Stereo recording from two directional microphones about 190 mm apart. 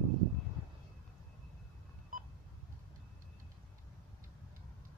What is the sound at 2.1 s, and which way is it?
Sonar, 45° right (ahead or behind).